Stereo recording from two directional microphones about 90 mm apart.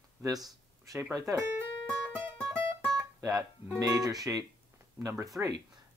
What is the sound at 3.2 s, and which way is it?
Speech, 30° right (ahead or behind).